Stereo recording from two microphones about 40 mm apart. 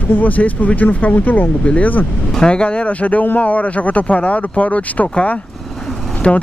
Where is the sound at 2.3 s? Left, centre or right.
Left.